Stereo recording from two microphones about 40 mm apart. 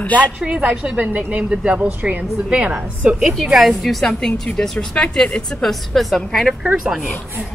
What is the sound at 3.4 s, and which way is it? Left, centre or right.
Speech, centre.